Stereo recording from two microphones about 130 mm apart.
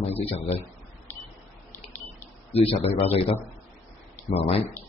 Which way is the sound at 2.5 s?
50° left (ahead or behind).